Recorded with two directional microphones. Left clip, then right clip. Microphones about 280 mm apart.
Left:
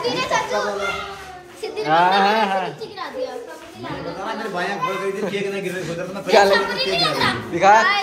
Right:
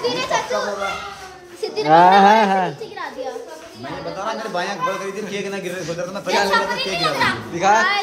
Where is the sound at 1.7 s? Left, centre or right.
Right.